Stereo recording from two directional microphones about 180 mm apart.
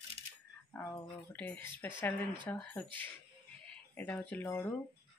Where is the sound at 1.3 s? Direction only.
10° left (ahead or behind).